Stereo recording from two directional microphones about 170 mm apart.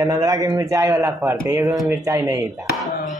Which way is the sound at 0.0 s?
20° right (ahead or behind).